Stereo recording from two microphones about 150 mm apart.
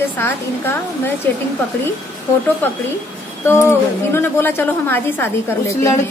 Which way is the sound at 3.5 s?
15° left (ahead or behind).